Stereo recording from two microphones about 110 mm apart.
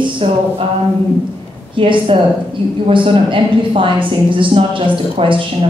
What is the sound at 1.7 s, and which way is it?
A woman's voice, 50° right (ahead or behind).